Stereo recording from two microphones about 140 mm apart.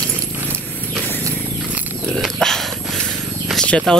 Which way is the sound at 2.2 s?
5° left (ahead or behind).